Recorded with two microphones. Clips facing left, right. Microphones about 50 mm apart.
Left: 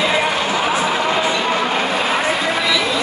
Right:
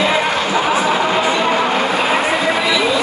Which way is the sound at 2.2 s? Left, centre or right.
Centre.